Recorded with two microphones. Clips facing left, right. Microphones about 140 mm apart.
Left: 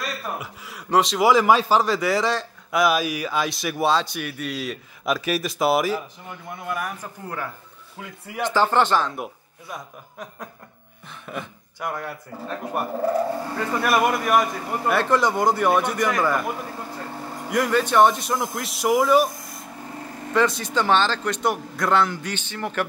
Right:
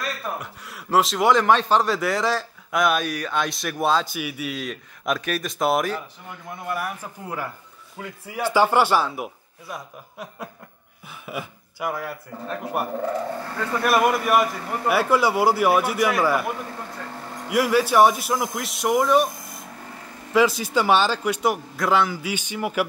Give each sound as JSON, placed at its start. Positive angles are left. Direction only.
{"t": 0.4, "sound": "a man's voice", "side_deg": 0}
{"t": 6.5, "sound": "a man's voice", "side_deg": -5}
{"t": 13.4, "sound": "speech", "side_deg": 10}
{"t": 13.8, "sound": "a man's voice", "side_deg": 0}
{"t": 20.3, "sound": "a man's voice", "side_deg": -5}